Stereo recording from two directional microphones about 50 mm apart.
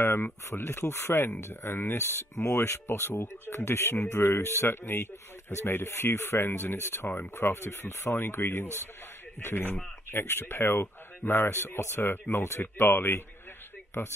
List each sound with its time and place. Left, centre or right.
0.5 s speech: left
2.9 s a man's voice: left